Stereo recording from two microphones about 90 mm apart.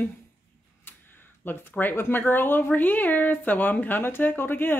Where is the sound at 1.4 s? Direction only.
25° left (ahead or behind).